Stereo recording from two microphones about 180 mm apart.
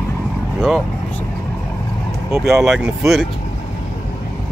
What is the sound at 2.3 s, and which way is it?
Speech, 15° right (ahead or behind).